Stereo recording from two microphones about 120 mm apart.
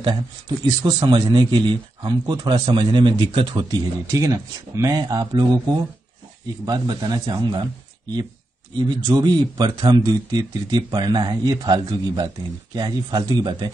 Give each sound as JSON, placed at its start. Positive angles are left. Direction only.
{"t": 0.0, "sound": "speech", "side_deg": -40}
{"t": 8.7, "sound": "speech", "side_deg": -35}